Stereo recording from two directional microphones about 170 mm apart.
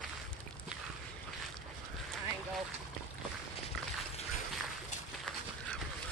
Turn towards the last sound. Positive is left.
turn(degrees=5)  # may be behind; listen again after turning